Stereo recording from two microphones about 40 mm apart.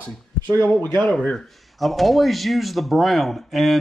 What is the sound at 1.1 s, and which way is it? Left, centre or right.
Speech, centre.